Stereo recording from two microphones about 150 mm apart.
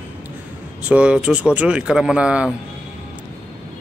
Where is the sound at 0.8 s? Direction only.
10° right (ahead or behind).